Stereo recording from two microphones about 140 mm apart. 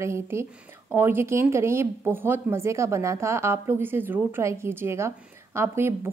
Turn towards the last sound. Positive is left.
turn(degrees=-20)  # may be behind; listen again after turning